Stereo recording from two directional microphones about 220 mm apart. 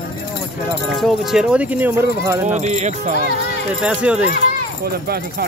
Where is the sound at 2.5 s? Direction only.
30° right (ahead or behind).